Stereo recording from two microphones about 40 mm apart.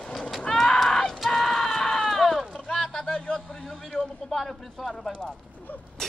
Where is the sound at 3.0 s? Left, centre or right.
Left.